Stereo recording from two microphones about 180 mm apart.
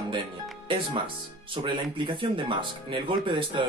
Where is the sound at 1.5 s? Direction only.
25° right (ahead or behind).